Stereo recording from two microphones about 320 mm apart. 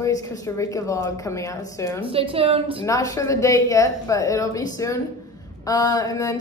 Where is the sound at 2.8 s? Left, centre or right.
Centre.